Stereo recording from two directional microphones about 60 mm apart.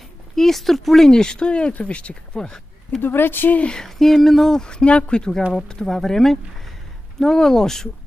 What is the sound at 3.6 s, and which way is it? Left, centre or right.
A woman's voice, centre.